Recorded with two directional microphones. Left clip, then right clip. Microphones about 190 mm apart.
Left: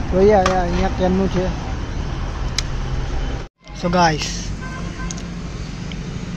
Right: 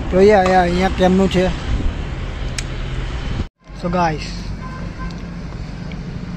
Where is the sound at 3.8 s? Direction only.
5° left (ahead or behind).